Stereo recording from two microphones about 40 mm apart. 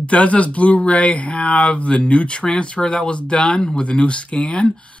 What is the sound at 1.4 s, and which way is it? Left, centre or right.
Speech, left.